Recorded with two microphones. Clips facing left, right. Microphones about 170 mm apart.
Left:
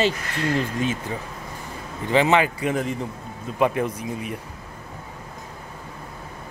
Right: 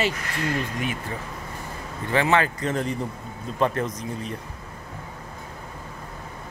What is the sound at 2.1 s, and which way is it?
Speech, 20° left (ahead or behind).